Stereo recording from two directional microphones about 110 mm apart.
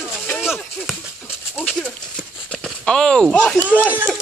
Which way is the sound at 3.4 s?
15° left (ahead or behind).